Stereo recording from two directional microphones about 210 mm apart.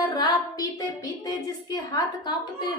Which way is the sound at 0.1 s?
15° left (ahead or behind).